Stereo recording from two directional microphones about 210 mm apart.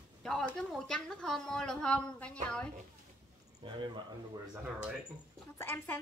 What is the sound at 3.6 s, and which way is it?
Speech, 25° right (ahead or behind).